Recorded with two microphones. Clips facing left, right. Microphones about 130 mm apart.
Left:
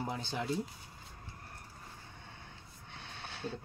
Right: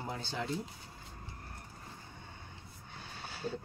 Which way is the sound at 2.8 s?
Centre (ahead or behind).